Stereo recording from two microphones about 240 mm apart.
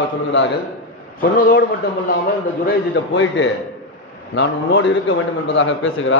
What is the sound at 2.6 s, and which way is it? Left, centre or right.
A man's voice, left.